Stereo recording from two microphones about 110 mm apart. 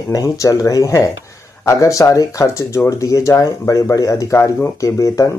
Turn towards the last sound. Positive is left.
turn(degrees=30)  # may be behind; listen again after turning